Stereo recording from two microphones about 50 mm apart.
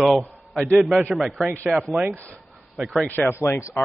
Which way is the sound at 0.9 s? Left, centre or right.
Centre.